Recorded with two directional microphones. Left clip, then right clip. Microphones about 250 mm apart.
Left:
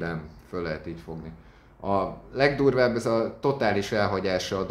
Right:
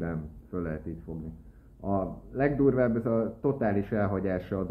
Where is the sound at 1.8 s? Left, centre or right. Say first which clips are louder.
Left 5 dB; centre.